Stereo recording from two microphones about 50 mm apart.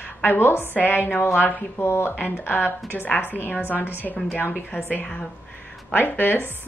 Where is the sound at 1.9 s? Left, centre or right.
Left.